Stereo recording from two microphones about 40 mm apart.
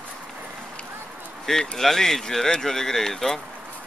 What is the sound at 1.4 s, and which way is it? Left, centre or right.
Speech, centre.